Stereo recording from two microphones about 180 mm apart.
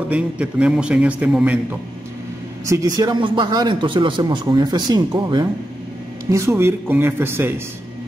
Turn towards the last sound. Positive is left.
turn(degrees=-10)  # may be behind; listen again after turning